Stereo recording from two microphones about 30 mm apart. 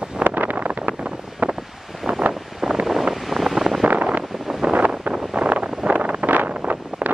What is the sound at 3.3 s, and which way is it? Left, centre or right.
Wind noise, centre.